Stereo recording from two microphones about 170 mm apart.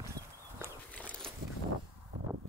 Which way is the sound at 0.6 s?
10° left (ahead or behind).